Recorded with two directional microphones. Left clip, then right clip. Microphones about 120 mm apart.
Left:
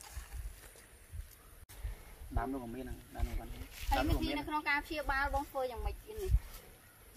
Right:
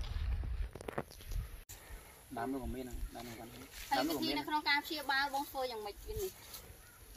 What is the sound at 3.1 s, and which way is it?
Speech, centre (ahead or behind).